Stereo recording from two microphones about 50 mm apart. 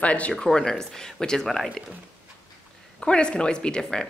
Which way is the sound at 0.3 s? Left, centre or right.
Centre.